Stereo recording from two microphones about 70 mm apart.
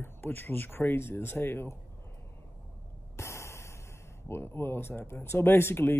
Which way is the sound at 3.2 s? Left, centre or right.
Left.